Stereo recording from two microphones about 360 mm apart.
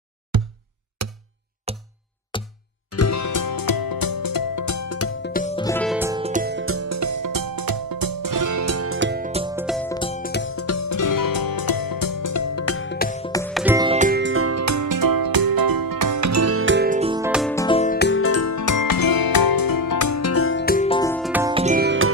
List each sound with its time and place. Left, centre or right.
0.3 s music: right
1.0 s music: right
1.7 s music: centre
2.3 s music: centre
2.9 s music: left
5.3 s music: centre
5.9 s music: centre
9.9 s music: centre
13.7 s music: centre
17.9 s music: left; by 21.3 s centre
21.3 s music: centre; by 22.1 s right